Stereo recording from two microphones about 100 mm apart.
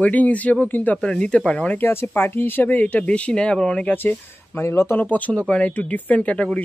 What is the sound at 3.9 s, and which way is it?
Speech, 20° left (ahead or behind).